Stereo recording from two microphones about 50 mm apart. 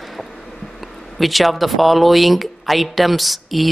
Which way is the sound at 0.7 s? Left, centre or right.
Centre.